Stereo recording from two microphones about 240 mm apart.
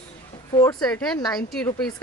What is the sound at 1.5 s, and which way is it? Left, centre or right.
Speech, centre.